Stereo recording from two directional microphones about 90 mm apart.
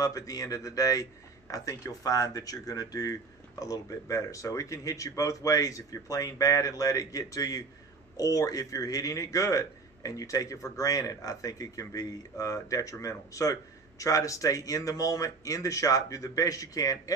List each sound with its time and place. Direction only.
0.0 s a man's voice: 40° left (ahead or behind)